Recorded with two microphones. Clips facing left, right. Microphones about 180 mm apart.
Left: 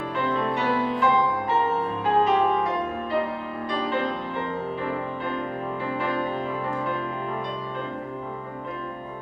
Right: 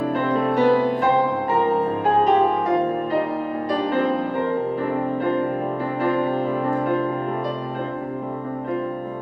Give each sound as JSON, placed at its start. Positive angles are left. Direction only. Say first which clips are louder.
{"t": 0.0, "sound": "music", "louder": "right 5 dB", "side_deg": -45}
{"t": 2.2, "sound": "music", "louder": "right 6 dB", "side_deg": -40}
{"t": 3.7, "sound": "music", "louder": "right 6 dB", "side_deg": -45}
{"t": 6.0, "sound": "music", "louder": "right 9 dB", "side_deg": -40}